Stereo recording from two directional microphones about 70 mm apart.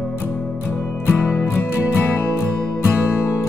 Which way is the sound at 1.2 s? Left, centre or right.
Left.